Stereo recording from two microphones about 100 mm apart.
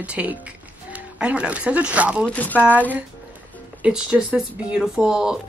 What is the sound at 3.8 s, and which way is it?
Speech, 5° right (ahead or behind).